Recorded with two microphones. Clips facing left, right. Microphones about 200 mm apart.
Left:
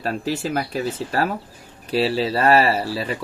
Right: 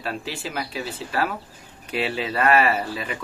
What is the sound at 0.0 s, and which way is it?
Speech, 40° left (ahead or behind).